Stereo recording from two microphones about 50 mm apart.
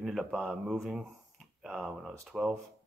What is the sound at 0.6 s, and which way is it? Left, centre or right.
Speech, centre.